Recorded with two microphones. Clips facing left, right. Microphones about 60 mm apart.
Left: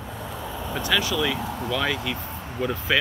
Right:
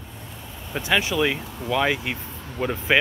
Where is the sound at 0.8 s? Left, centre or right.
Right.